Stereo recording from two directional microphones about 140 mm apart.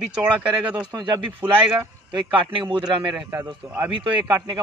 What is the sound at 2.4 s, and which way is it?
Speech, 40° right (ahead or behind).